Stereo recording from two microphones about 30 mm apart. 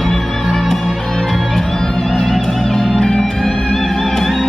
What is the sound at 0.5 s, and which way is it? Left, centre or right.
Music, centre.